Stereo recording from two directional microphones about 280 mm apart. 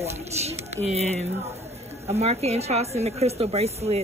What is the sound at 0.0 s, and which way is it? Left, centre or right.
A woman's voice, right.